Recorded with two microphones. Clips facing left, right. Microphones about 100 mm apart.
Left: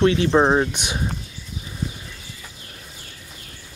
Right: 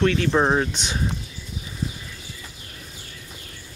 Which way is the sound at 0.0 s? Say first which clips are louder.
Left 3 dB; 15° left (ahead or behind).